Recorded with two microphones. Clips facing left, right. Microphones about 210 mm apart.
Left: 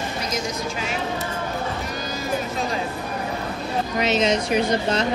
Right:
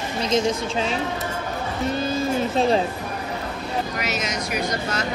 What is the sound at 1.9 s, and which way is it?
Music, 25° right (ahead or behind).